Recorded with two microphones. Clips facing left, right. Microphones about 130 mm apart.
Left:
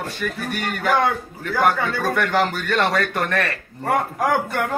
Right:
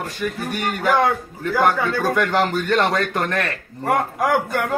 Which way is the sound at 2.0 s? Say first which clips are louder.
Even; 15° right (ahead or behind).